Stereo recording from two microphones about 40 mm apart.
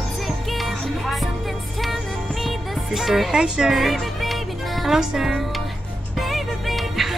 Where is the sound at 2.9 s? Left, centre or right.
Centre.